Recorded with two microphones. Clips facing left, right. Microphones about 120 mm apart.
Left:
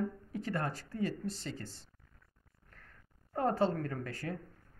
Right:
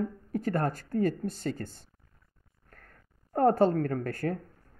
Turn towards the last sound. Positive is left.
turn(degrees=-50)  # may be behind; listen again after turning